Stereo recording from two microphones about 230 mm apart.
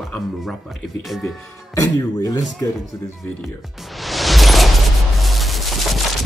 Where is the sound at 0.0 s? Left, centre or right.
Centre.